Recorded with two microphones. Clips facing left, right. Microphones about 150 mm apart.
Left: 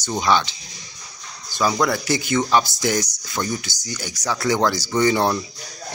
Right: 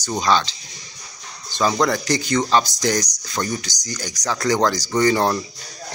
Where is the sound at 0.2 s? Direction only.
15° left (ahead or behind).